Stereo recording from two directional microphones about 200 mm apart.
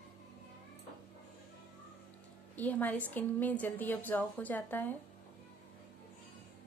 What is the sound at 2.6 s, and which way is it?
A woman's voice, 10° left (ahead or behind).